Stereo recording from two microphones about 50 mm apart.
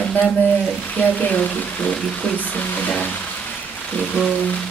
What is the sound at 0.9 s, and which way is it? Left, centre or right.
Speech, left.